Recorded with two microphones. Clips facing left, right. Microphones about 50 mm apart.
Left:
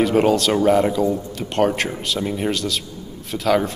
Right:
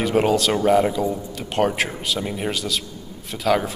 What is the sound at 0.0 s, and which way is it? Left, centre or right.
Speech, centre.